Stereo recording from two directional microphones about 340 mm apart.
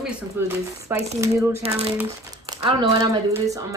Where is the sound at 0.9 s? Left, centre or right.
Centre.